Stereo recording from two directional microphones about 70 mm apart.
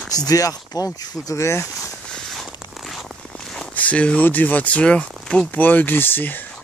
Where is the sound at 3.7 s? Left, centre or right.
Left.